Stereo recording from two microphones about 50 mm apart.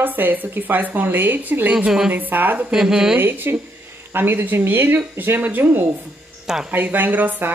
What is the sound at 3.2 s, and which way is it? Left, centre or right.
Speech, right.